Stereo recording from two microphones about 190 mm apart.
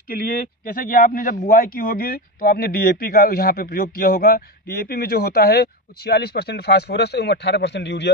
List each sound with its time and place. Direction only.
0.1 s a man's voice: 45° left (ahead or behind); by 8.1 s 65° left (ahead or behind)